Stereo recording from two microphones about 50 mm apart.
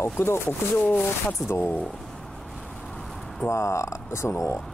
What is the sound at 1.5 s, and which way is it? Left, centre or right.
Speech, left.